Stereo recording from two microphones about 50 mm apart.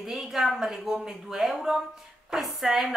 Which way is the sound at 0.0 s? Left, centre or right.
Centre.